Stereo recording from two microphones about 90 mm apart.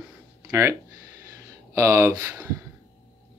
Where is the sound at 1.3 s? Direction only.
35° right (ahead or behind).